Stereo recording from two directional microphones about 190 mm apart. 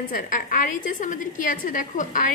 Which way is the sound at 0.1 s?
45° left (ahead or behind).